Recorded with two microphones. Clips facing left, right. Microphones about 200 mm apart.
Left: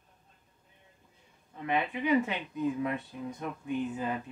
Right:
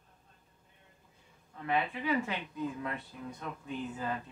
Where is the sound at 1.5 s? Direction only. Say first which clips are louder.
Left 2 dB; 20° left (ahead or behind).